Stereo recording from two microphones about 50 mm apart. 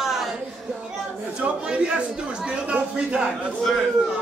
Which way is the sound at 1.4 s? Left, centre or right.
Centre.